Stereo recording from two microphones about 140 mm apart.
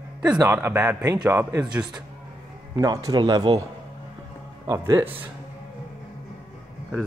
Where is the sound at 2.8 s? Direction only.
25° right (ahead or behind).